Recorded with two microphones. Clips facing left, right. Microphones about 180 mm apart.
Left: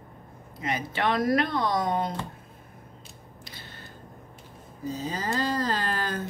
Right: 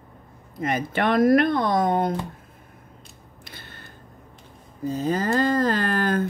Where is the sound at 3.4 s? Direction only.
55° right (ahead or behind).